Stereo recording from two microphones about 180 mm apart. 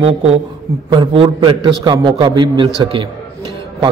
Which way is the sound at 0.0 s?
35° right (ahead or behind).